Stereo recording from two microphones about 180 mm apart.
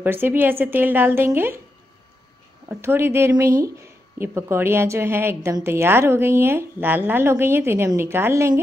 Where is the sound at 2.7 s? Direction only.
15° right (ahead or behind).